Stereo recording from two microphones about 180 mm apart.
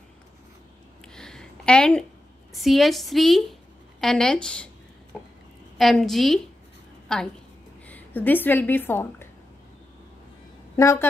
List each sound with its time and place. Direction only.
1.0 s a sound: 5° left (ahead or behind)
2.5 s a woman's voice: centre (ahead or behind)
5.8 s a woman's voice: centre (ahead or behind)
10.8 s a woman's voice: 15° left (ahead or behind)